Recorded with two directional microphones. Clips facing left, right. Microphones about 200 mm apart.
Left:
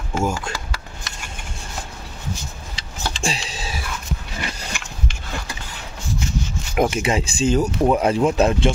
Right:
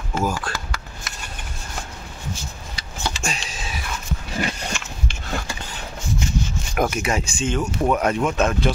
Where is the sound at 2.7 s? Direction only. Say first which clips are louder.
Right 1 dB; 30° left (ahead or behind).